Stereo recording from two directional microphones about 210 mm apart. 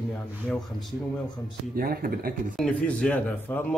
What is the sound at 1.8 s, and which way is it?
Speech, 45° right (ahead or behind).